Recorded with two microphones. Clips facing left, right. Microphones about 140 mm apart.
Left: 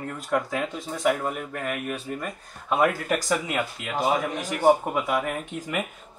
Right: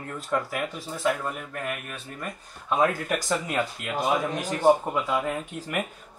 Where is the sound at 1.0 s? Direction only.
15° left (ahead or behind).